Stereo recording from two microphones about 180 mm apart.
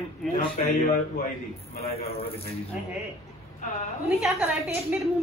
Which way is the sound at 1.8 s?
35° left (ahead or behind).